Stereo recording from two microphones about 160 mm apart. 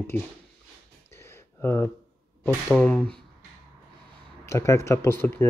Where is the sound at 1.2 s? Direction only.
15° left (ahead or behind).